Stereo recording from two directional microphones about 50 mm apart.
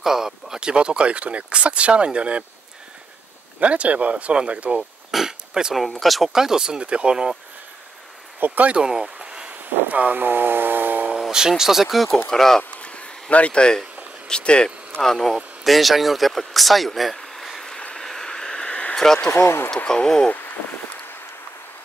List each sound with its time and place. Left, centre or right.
0.0 s speech: centre
3.5 s speech: right
5.1 s pig: centre
5.9 s speech: centre
8.4 s speech: right
8.8 s a sound: centre; by 11.1 s right
11.1 s speech: centre
12.8 s a sound: left
14.2 s speech: centre
15.0 s speech: centre
17.7 s a sound: centre
19.4 s speech: left